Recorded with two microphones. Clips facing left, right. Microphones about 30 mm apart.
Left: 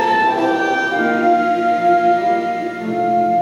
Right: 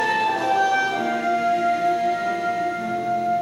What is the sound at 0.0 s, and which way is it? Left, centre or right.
Music, centre.